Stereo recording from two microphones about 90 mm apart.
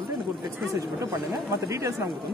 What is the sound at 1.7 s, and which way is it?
Speech, 35° right (ahead or behind).